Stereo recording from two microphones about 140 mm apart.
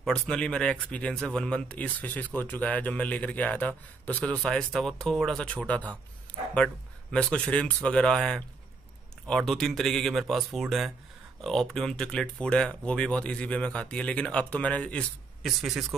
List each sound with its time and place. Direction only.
0.0 s speech: 5° left (ahead or behind)
15.4 s speech: centre (ahead or behind)